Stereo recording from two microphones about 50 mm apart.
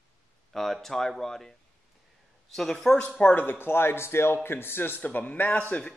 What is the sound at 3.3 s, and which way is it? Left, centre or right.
Speech, left.